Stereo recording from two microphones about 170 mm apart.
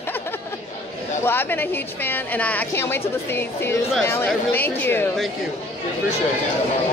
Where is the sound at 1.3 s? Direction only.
10° left (ahead or behind).